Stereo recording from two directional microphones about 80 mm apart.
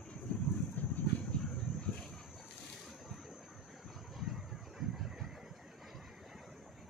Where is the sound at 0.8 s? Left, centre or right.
Left.